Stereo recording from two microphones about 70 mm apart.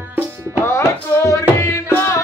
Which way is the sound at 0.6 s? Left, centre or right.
Left.